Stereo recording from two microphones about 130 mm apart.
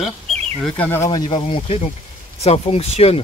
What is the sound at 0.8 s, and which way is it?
Speech, 15° left (ahead or behind).